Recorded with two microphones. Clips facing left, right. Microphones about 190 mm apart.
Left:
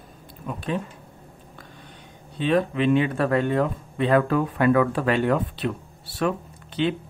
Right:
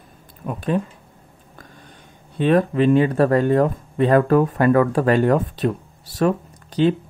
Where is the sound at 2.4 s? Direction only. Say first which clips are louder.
Right 5 dB; 45° right (ahead or behind).